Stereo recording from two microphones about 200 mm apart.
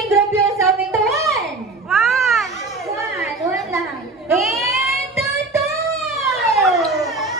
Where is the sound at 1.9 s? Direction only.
Centre (ahead or behind).